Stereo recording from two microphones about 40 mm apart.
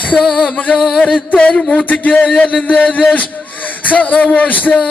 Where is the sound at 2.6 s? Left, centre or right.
Left.